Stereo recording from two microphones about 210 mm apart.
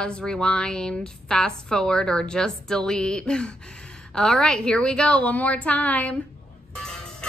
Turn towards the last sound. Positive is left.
turn(degrees=5)  # may be behind; listen again after turning